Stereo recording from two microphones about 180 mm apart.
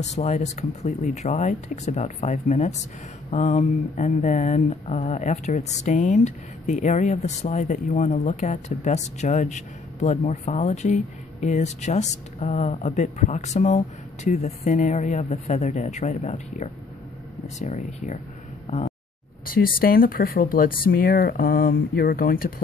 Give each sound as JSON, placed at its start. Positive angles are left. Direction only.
{"t": 0.0, "sound": "speech", "side_deg": 40}
{"t": 18.7, "sound": "a sound", "side_deg": 35}
{"t": 19.4, "sound": "speech", "side_deg": 55}